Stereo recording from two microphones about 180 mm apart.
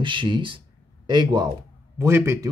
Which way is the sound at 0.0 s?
25° right (ahead or behind).